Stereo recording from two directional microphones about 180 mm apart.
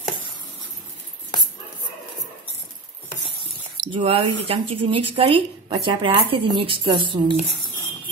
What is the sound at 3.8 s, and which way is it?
Speech, 25° right (ahead or behind).